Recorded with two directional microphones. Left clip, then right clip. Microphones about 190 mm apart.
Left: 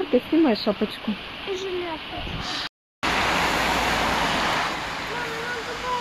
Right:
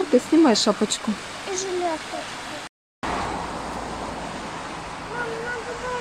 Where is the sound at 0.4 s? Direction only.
25° right (ahead or behind).